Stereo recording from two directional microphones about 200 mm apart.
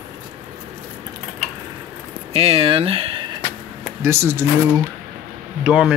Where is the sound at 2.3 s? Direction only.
30° right (ahead or behind).